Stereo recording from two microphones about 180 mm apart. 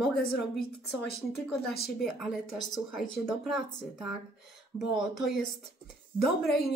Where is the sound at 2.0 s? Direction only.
Centre (ahead or behind).